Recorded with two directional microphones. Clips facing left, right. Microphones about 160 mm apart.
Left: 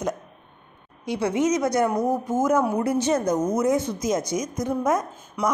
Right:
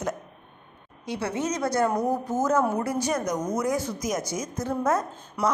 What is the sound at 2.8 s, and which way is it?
Speech, 25° left (ahead or behind).